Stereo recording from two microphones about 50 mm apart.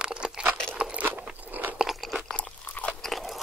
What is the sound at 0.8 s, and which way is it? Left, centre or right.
Crunch, right.